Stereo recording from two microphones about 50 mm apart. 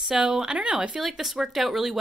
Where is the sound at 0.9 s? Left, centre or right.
Centre.